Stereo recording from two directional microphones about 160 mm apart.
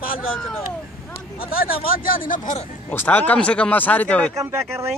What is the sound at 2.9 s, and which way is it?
Speech, 10° left (ahead or behind).